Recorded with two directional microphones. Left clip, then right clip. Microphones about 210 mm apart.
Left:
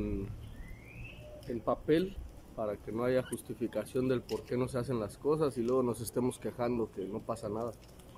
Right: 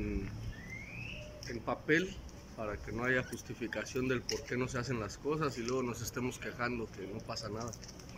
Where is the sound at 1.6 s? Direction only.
20° left (ahead or behind).